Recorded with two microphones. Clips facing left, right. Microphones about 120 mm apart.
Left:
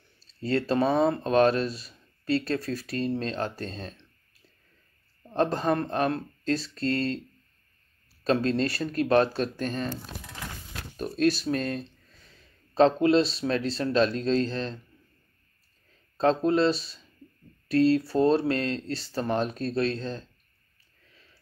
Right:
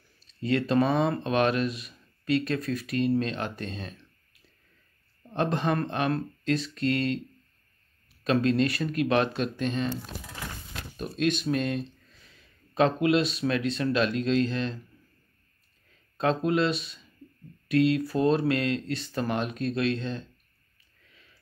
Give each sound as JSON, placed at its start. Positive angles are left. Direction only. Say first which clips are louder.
{"t": 0.2, "sound": "speech", "louder": "even", "side_deg": 30}
{"t": 5.3, "sound": "speech", "louder": "left 2 dB", "side_deg": 35}
{"t": 8.2, "sound": "speech", "louder": "right 1 dB", "side_deg": 30}
{"t": 11.0, "sound": "speech", "louder": "left 3 dB", "side_deg": 40}
{"t": 16.2, "sound": "speech", "louder": "left 2 dB", "side_deg": 30}